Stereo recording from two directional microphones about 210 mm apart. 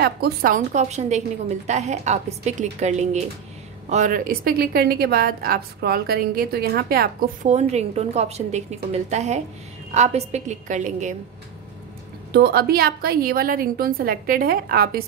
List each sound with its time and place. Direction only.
0.0 s a woman's voice: 45° right (ahead or behind)
12.3 s a woman's voice: 50° right (ahead or behind)